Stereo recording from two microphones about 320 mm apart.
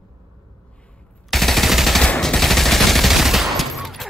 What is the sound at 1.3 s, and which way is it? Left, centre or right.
Machine gun, centre.